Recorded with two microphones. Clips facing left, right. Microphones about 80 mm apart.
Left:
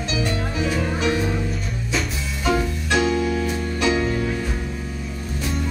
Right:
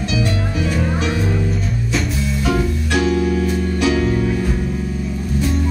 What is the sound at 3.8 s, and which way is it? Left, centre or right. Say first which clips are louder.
Music: right 3 dB; centre.